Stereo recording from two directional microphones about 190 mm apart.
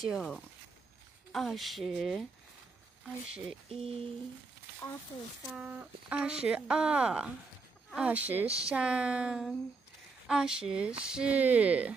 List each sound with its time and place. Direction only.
0.0 s speech: centre (ahead or behind)
3.3 s speech: 5° right (ahead or behind)
3.6 s speech: 30° right (ahead or behind)
5.5 s speech: 5° right (ahead or behind)